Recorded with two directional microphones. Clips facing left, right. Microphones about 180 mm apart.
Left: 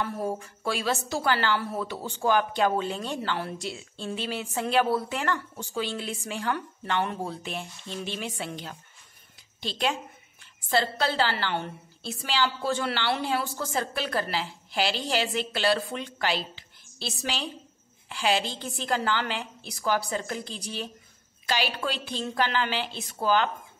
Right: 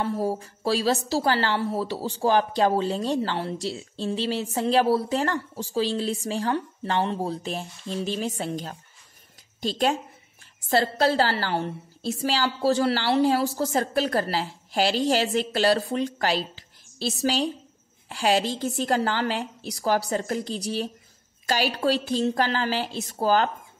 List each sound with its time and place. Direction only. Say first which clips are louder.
0.0 s speech: right 4 dB; 30° right (ahead or behind)